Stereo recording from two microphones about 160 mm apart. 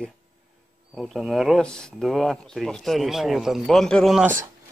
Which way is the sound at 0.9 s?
Centre (ahead or behind).